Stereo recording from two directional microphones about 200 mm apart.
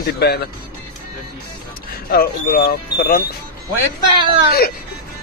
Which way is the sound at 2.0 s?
50° left (ahead or behind).